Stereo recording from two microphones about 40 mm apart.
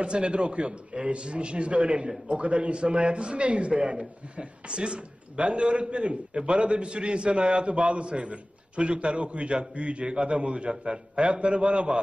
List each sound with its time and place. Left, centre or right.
0.0 s a man's voice: right